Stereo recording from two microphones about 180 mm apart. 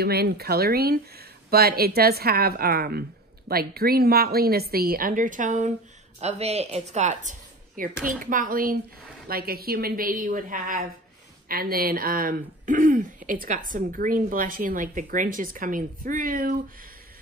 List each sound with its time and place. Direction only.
0.0 s speech: 60° right (ahead or behind)